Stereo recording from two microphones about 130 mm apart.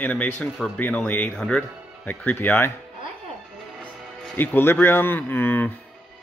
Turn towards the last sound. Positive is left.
turn(degrees=15)  # may be behind; listen again after turning